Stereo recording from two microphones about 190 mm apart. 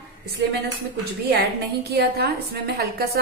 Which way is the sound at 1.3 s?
60° right (ahead or behind).